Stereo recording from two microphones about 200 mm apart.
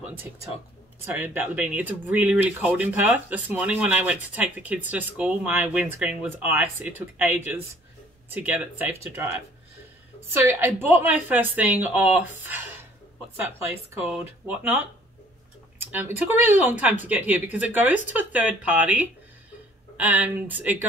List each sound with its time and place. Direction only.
1.0 s speech: 10° right (ahead or behind)
10.4 s speech: 10° right (ahead or behind)
12.4 s a sound: 10° right (ahead or behind)
13.4 s speech: 10° right (ahead or behind)
15.8 s a sound: 10° right (ahead or behind)
16.7 s speech: 10° right (ahead or behind)